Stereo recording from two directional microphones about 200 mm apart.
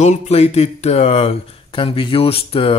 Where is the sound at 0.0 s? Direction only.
35° left (ahead or behind).